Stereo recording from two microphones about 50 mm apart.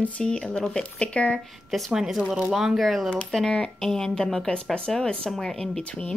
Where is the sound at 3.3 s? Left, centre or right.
Centre.